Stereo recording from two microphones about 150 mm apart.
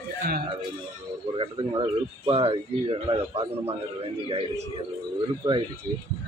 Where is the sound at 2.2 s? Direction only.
40° right (ahead or behind).